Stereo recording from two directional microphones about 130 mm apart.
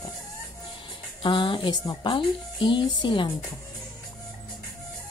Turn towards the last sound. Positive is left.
turn(degrees=35)  # may be behind; listen again after turning